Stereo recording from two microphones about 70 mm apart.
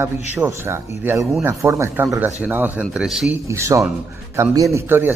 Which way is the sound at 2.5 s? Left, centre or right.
Right.